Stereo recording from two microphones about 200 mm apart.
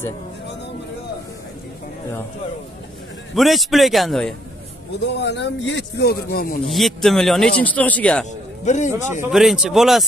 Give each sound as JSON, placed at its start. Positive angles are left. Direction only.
{"t": 3.3, "sound": "a man's voice", "side_deg": 0}
{"t": 5.1, "sound": "speech", "side_deg": 60}
{"t": 6.7, "sound": "a man's voice", "side_deg": 0}
{"t": 8.6, "sound": "a man's voice", "side_deg": 35}
{"t": 9.3, "sound": "a man's voice", "side_deg": 0}